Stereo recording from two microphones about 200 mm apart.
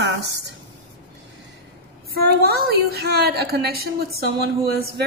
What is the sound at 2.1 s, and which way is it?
A woman's voice, 50° right (ahead or behind).